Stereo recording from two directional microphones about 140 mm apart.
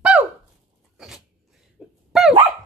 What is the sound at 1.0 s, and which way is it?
Dog, 5° right (ahead or behind).